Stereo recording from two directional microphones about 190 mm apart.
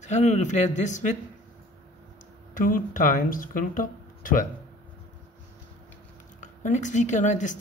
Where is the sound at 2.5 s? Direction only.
45° left (ahead or behind).